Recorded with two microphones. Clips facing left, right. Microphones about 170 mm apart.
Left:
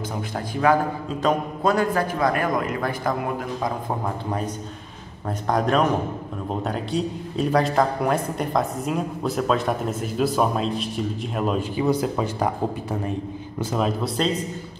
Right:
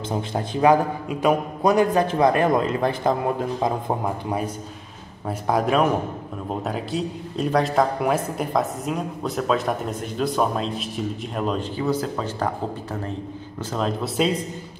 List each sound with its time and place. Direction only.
0.1 s a man's voice: 25° right (ahead or behind)
3.6 s speech: 10° right (ahead or behind)
5.5 s a man's voice: 5° right (ahead or behind); by 12.5 s 15° left (ahead or behind)
13.6 s a man's voice: 10° left (ahead or behind)